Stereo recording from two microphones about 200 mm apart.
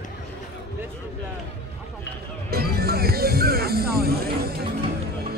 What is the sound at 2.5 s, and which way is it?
Music, 50° right (ahead or behind).